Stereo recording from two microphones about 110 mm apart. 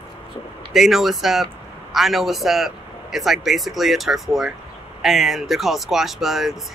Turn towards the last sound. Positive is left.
turn(degrees=0)  # may be behind; listen again after turning